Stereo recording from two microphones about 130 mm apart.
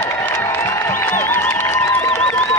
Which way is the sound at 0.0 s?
20° left (ahead or behind).